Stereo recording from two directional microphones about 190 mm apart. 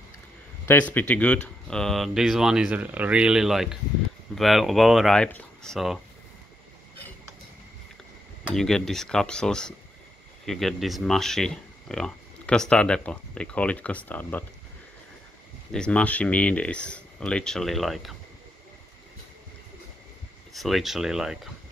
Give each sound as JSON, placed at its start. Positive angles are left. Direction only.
{"t": 0.7, "sound": "speech", "side_deg": 10}
{"t": 8.5, "sound": "speech", "side_deg": 0}
{"t": 15.7, "sound": "speech", "side_deg": 5}
{"t": 20.5, "sound": "speech", "side_deg": 0}